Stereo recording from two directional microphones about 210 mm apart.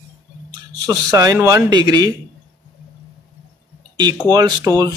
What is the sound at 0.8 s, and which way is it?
Speech, 15° right (ahead or behind).